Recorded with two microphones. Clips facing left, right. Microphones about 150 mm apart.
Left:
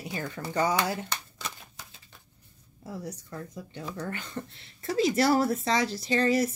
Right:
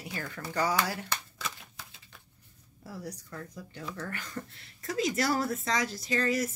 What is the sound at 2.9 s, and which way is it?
Speech, 25° left (ahead or behind).